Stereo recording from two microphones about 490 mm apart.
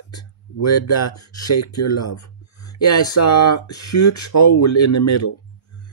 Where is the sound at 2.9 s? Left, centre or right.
Left.